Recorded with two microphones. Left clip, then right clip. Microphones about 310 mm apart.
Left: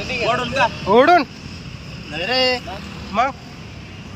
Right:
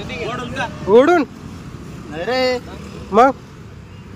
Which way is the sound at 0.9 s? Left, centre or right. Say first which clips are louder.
Right 1 dB; centre.